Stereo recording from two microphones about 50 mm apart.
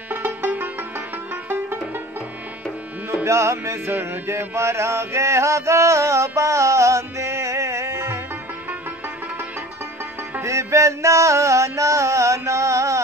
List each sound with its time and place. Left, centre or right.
0.1 s music: right
3.3 s music: right
3.9 s music: right
4.3 s a sound: right
10.4 s music: right